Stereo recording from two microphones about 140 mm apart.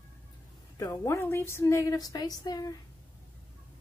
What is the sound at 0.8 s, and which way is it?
Speech, 20° left (ahead or behind).